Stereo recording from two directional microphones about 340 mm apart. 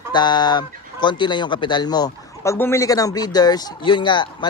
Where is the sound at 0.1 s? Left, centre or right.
Centre.